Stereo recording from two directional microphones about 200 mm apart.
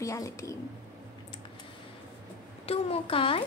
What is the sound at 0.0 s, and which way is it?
Speech, 15° left (ahead or behind).